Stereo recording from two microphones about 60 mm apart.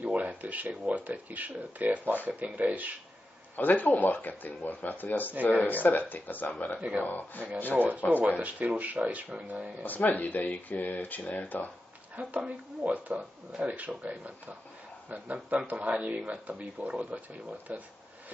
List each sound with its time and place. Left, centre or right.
0.0 s speech: right
3.5 s speech: left
8.2 s speech: right
9.8 s speech: left
12.2 s a man's voice: right